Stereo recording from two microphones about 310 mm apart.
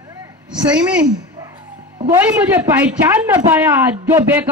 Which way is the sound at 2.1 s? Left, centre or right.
Centre.